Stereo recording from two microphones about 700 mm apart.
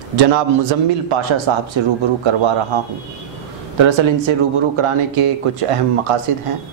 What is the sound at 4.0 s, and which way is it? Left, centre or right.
Speech, right.